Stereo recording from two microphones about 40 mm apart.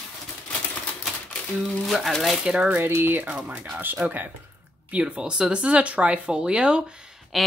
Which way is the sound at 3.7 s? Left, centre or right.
Right.